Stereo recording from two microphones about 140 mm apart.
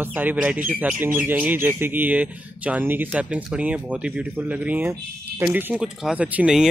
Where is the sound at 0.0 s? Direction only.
15° right (ahead or behind).